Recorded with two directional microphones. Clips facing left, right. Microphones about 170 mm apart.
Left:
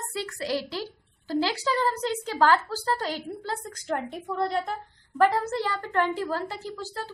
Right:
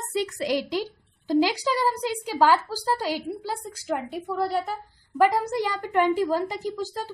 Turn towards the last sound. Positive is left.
turn(degrees=-15)  # may be behind; listen again after turning